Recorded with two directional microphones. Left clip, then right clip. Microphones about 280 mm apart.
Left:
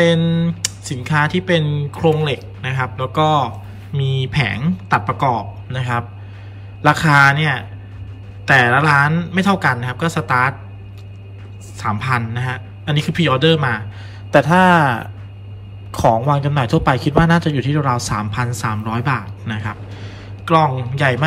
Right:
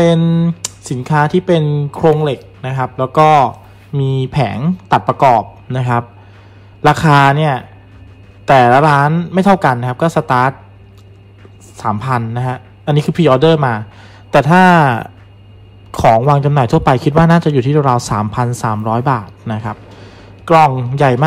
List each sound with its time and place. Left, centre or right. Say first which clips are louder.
0.0 s speech: right 3 dB; centre
11.7 s a man's voice: right 3 dB; centre
16.0 s a man's voice: right 5 dB; left
16.3 s a man's voice: right 5 dB; centre